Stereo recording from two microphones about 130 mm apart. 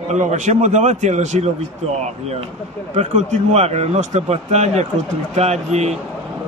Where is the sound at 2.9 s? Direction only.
60° right (ahead or behind).